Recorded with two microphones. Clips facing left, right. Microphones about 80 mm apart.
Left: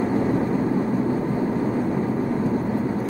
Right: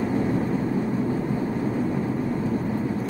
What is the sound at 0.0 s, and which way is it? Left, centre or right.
Vehicle, centre.